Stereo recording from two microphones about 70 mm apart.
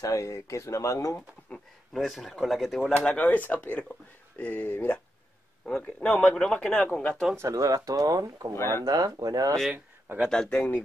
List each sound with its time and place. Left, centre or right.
0.0 s speech: left
1.5 s speech: centre
3.1 s speech: left
5.7 s speech: centre
7.3 s speech: right
8.5 s speech: left
8.8 s speech: right
10.3 s speech: centre